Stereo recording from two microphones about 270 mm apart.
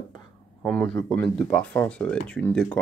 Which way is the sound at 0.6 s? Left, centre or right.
Centre.